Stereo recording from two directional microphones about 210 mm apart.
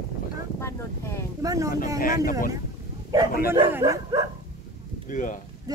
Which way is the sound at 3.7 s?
15° right (ahead or behind).